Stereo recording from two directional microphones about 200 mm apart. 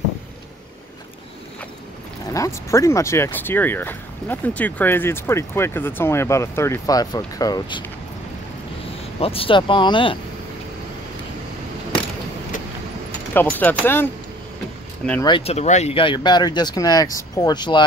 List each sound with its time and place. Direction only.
2.2 s speech: 15° left (ahead or behind)
9.2 s speech: 30° left (ahead or behind)
13.3 s speech: 10° left (ahead or behind)
15.2 s speech: 25° left (ahead or behind)